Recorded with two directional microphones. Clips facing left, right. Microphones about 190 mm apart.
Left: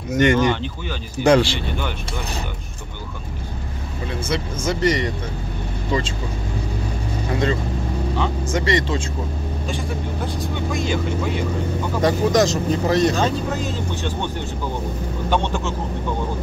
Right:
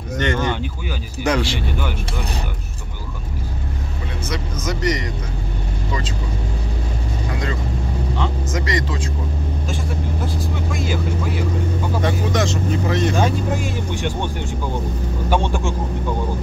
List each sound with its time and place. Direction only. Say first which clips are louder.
0.1 s speech: left 5 dB; 10° left (ahead or behind)
1.2 s speech: left 5 dB; 30° left (ahead or behind)
4.3 s speech: left 2 dB; 30° left (ahead or behind)
8.5 s speech: left 3 dB; 30° left (ahead or behind)
9.7 s speech: left 1 dB; centre (ahead or behind)
12.0 s speech: left 5 dB; 40° left (ahead or behind)
13.2 s speech: right 1 dB; 10° right (ahead or behind)